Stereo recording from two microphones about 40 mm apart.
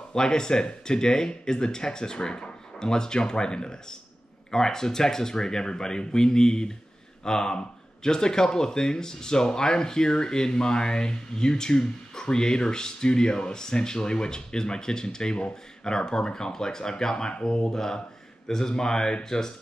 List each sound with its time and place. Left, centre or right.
0.1 s speech: centre